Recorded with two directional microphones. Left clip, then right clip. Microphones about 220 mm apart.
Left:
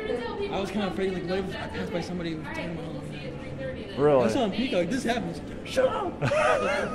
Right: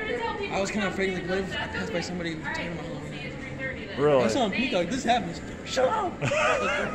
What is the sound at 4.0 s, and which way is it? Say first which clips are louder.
Speech: even; 10° left (ahead or behind).